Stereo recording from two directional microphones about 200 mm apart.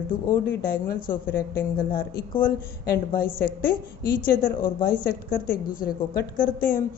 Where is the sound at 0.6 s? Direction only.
45° left (ahead or behind).